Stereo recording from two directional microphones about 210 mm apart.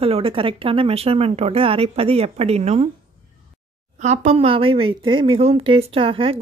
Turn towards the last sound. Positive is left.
turn(degrees=-25)  # may be behind; listen again after turning